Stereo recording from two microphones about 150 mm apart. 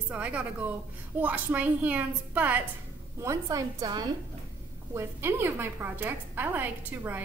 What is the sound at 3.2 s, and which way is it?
Speech, 20° right (ahead or behind).